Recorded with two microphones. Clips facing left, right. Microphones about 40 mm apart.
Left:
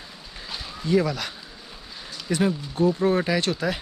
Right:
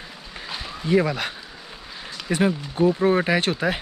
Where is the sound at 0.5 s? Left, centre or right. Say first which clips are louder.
Right 2 dB; right.